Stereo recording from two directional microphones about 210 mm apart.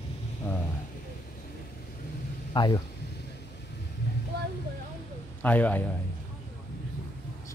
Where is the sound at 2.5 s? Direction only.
20° left (ahead or behind).